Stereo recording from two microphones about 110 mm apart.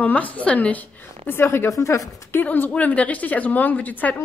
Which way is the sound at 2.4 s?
15° left (ahead or behind).